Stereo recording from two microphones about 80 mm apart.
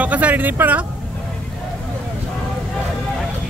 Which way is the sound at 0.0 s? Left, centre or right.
Centre.